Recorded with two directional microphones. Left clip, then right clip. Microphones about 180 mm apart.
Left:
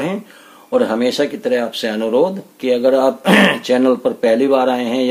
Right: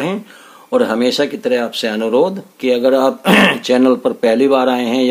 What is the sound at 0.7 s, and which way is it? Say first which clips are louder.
Speech: right 1 dB; 30° right (ahead or behind).